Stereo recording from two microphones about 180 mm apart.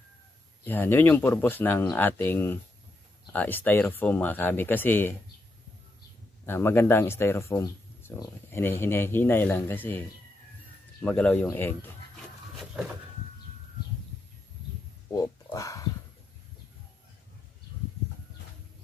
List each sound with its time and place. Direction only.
0.7 s speech: 10° left (ahead or behind)
6.4 s speech: 10° left (ahead or behind)
12.5 s a sound: centre (ahead or behind)
15.1 s dog: 20° left (ahead or behind)